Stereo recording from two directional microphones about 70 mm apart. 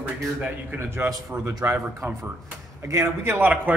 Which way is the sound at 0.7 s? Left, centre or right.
Right.